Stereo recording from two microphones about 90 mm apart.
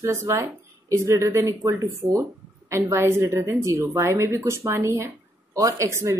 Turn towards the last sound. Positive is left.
turn(degrees=-30)  # may be behind; listen again after turning